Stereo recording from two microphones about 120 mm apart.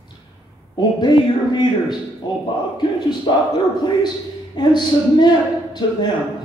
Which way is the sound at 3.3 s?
45° left (ahead or behind).